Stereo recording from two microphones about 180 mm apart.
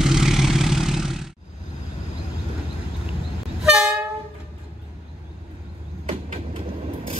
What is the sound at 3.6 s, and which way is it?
Train, 5° right (ahead or behind).